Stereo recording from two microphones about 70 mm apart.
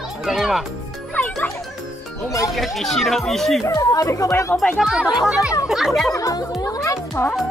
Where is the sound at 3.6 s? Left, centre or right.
Left.